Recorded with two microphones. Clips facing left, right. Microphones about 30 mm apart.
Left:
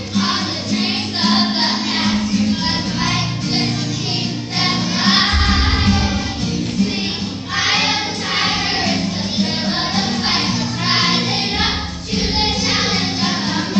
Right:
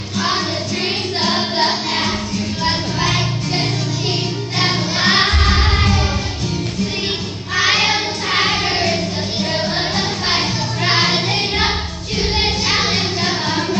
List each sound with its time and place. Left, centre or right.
4.9 s music: right
7.6 s choir: right
12.2 s music: right
12.8 s music: right